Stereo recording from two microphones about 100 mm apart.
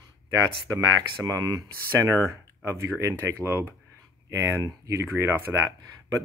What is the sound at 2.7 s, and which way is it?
Speech, 30° right (ahead or behind).